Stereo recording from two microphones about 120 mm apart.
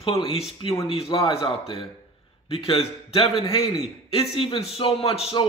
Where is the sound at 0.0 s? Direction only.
50° left (ahead or behind).